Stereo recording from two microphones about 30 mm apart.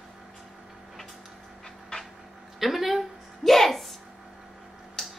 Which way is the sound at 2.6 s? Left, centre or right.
Centre.